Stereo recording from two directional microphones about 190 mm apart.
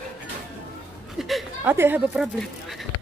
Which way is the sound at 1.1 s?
Centre (ahead or behind).